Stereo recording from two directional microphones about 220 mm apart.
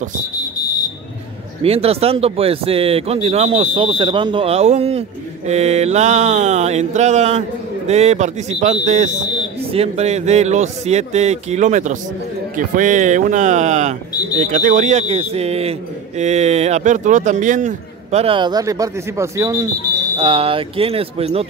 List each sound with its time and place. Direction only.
1.6 s a man's voice: 25° right (ahead or behind)